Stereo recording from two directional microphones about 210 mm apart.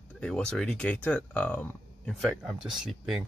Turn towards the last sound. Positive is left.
turn(degrees=0)  # may be behind; listen again after turning